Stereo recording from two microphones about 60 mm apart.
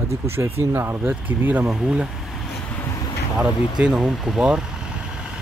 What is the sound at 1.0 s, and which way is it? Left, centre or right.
Speech, right.